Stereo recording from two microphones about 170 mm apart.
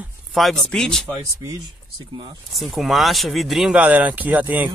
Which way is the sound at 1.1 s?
20° right (ahead or behind).